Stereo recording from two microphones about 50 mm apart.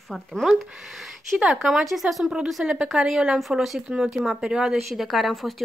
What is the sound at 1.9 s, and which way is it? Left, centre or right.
Speech, centre.